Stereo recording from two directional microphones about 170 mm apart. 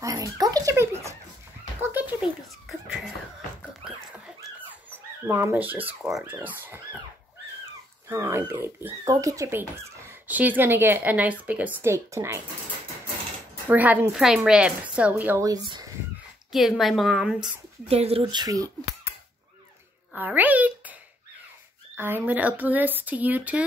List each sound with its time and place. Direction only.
0.0 s giggle: 20° right (ahead or behind)
1.8 s a sound: 10° right (ahead or behind)
5.2 s speech: 15° right (ahead or behind)
8.1 s speech: 15° right (ahead or behind)
13.7 s speech: 10° right (ahead or behind)
16.5 s a woman's voice: centre (ahead or behind)
17.8 s speech: 35° right (ahead or behind); by 19.1 s 20° right (ahead or behind)
20.1 s a child's voice: 10° right (ahead or behind)
21.9 s speech: 10° right (ahead or behind)